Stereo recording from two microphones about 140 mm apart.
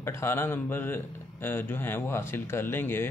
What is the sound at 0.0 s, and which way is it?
A man's voice, 15° left (ahead or behind).